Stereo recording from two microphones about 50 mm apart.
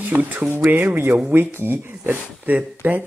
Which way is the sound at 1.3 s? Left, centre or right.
Right.